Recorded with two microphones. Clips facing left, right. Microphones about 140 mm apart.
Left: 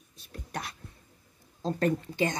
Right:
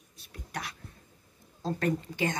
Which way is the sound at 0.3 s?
35° left (ahead or behind).